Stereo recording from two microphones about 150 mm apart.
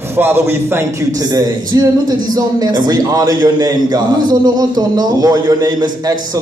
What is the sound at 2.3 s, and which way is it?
A man's voice, 25° right (ahead or behind).